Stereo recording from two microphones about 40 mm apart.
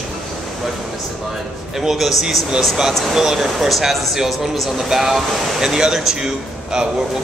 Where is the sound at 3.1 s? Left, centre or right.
Centre.